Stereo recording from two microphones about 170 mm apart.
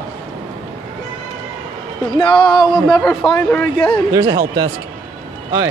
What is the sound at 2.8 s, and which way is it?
A man's voice, centre (ahead or behind).